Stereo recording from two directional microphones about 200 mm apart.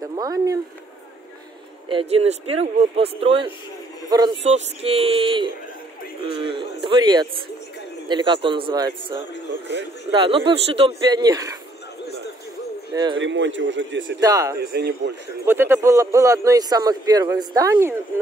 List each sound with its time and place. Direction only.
0.0 s speech: 20° right (ahead or behind)
1.9 s a man's voice: 30° right (ahead or behind)
4.4 s a man's voice: 30° right (ahead or behind)
10.1 s a man's voice: 25° right (ahead or behind)
12.9 s a man's voice: 20° right (ahead or behind)
13.2 s a man's voice: 65° right (ahead or behind)
14.2 s a man's voice: 15° right (ahead or behind)
14.6 s speech: 55° right (ahead or behind)
15.4 s a man's voice: 10° right (ahead or behind)